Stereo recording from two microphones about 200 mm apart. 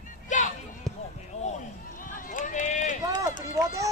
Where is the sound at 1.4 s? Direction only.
40° left (ahead or behind).